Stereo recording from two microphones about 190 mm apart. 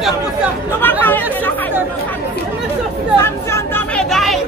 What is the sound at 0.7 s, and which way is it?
Chatter, 10° left (ahead or behind).